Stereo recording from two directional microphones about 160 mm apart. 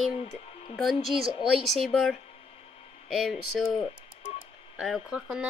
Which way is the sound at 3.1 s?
Centre (ahead or behind).